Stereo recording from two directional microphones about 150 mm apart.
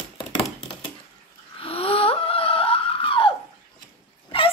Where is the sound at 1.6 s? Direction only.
40° left (ahead or behind).